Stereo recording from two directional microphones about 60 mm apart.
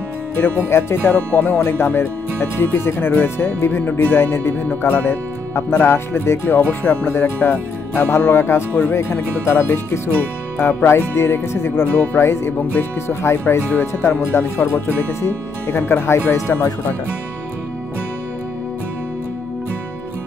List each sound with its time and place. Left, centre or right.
0.4 s speech: left